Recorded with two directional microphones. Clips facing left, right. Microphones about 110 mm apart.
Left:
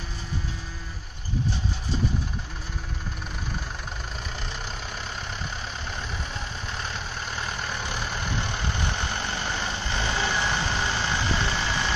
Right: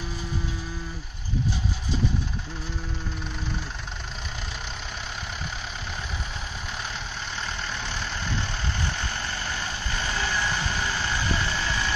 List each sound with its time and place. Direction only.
7.8 s vehicle: 10° left (ahead or behind)